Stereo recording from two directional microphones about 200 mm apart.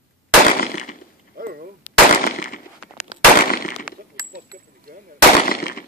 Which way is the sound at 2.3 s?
45° left (ahead or behind).